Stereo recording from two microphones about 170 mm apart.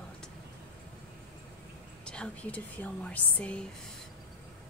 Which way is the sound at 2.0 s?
5° left (ahead or behind).